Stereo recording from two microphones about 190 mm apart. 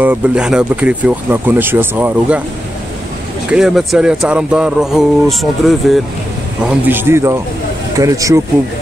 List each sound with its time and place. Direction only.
0.0 s speech: 5° right (ahead or behind)
3.4 s a man's voice: 5° right (ahead or behind)